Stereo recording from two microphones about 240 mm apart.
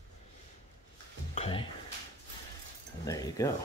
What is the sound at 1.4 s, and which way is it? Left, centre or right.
Speech, left.